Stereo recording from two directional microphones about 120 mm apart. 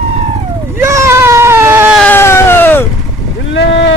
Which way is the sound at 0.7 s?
25° right (ahead or behind).